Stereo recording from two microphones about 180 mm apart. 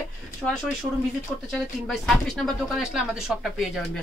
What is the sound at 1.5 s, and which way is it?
Speech, centre (ahead or behind).